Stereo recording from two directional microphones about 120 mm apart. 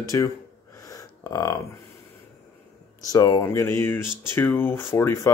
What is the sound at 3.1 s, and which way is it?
Speech, 30° left (ahead or behind).